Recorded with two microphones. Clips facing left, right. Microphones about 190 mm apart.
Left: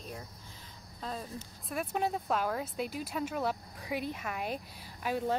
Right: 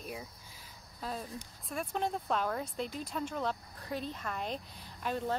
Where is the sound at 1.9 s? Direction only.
5° left (ahead or behind).